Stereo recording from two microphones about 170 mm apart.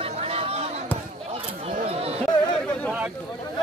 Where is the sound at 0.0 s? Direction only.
35° right (ahead or behind).